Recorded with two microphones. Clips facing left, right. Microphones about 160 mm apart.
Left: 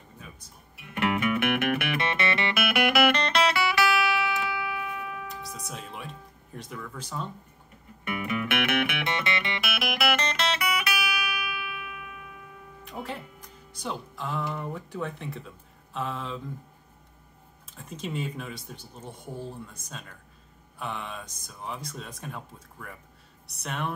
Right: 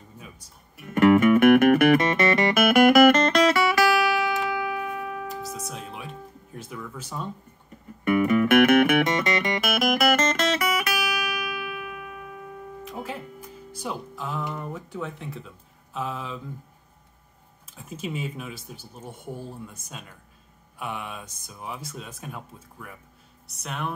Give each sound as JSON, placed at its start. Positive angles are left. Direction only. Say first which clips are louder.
{"t": 0.7, "sound": "music", "louder": "right 11 dB", "side_deg": -45}
{"t": 5.7, "sound": "music", "louder": "right 2 dB", "side_deg": 0}
{"t": 6.5, "sound": "speech", "louder": "right 1 dB", "side_deg": -5}
{"t": 8.0, "sound": "music", "louder": "right 10 dB", "side_deg": -45}
{"t": 12.8, "sound": "music", "louder": "right 1 dB", "side_deg": -5}
{"t": 14.5, "sound": "a sound", "louder": "even", "side_deg": 0}
{"t": 17.7, "sound": "speech", "louder": "right 1 dB", "side_deg": -5}
{"t": 20.8, "sound": "speech", "louder": "right 1 dB", "side_deg": -10}